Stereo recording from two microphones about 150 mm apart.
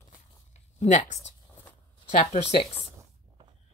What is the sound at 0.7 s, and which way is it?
A woman's voice, 50° left (ahead or behind).